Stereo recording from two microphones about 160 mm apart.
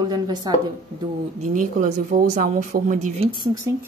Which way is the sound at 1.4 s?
50° right (ahead or behind).